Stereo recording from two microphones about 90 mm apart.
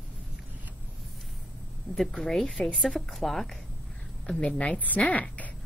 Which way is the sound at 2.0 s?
5° left (ahead or behind).